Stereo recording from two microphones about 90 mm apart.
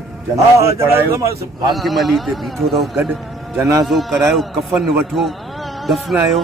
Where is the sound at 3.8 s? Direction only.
Centre (ahead or behind).